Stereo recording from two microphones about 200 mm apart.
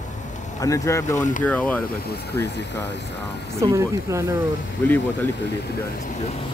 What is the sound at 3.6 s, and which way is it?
Speech, 15° right (ahead or behind).